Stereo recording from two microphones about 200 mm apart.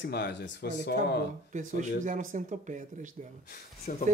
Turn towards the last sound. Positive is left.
turn(degrees=40)  # may be behind; listen again after turning